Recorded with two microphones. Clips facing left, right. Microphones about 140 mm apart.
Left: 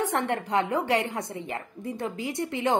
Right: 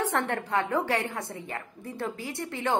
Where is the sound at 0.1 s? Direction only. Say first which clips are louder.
Left 2 dB; 20° left (ahead or behind).